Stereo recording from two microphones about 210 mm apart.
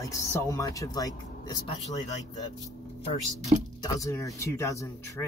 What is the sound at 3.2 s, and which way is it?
Speech, 35° right (ahead or behind).